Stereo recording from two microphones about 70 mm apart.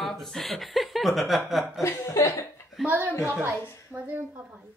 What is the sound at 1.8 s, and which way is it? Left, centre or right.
Speech, left.